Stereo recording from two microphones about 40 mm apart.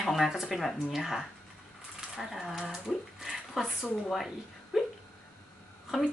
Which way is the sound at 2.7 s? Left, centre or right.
Centre.